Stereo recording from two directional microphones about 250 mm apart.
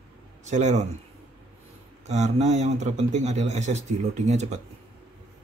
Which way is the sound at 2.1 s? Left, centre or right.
Right.